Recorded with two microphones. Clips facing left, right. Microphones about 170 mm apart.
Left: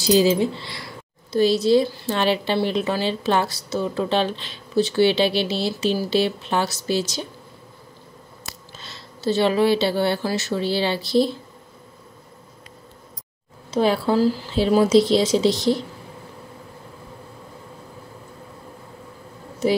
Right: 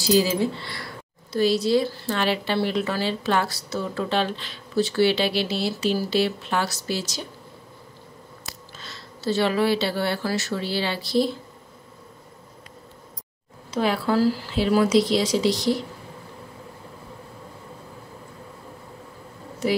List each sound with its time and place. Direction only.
0.0 s a woman's voice: 20° left (ahead or behind)
8.5 s speech: 25° left (ahead or behind)
13.7 s a woman's voice: 30° left (ahead or behind)